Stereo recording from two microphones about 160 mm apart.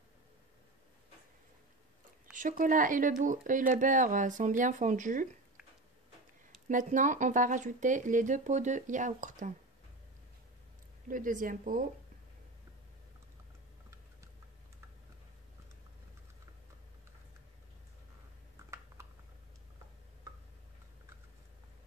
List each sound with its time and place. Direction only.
2.3 s speech: 55° right (ahead or behind)
6.7 s speech: 55° right (ahead or behind)
11.1 s speech: 55° right (ahead or behind)